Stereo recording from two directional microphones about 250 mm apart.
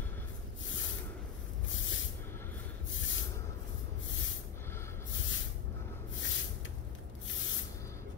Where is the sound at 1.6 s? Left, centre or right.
Left.